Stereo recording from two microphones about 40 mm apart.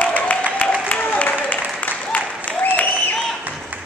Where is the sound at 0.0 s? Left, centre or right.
Left.